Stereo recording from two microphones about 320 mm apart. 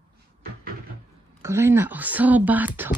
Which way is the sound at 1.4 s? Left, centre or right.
Centre.